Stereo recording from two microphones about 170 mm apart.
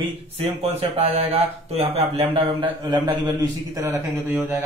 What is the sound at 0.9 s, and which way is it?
A man's voice, 35° right (ahead or behind).